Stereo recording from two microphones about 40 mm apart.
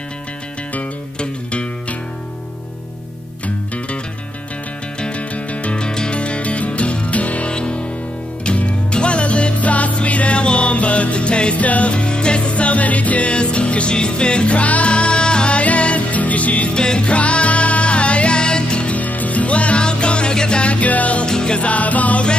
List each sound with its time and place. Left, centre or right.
1.2 s music: left
3.4 s music: left
5.0 s music: left
5.8 s music: left
16.7 s music: left
18.9 s music: left
21.3 s music: centre
21.5 s music: left